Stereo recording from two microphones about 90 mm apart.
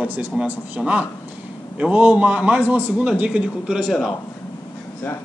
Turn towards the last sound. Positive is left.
turn(degrees=0)  # may be behind; listen again after turning